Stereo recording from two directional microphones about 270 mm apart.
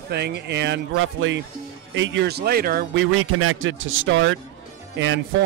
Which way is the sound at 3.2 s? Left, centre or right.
Right.